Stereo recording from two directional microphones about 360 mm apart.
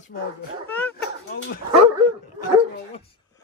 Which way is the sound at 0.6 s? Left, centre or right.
Centre.